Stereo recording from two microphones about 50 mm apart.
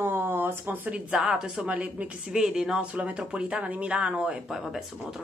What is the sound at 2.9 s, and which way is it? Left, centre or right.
Speech, right.